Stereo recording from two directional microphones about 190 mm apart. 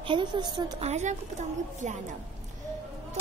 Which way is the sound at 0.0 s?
25° right (ahead or behind).